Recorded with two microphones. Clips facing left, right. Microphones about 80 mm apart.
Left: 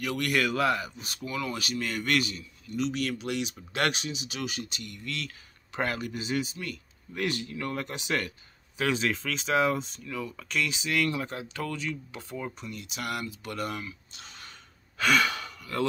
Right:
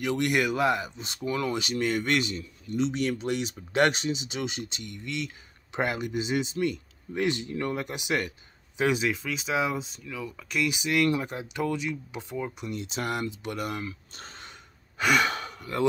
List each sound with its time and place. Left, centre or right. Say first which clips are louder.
0.0 s speech: right 2 dB; right
9.0 s speech: right 1 dB; centre
12.7 s speech: right 4 dB; right
13.8 s speech: right 4 dB; right
15.0 s speech: right 1 dB; right